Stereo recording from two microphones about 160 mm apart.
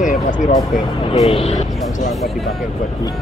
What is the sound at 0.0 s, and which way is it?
Vehicle, 50° left (ahead or behind).